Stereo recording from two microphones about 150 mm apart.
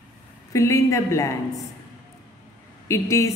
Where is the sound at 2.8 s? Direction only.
20° left (ahead or behind).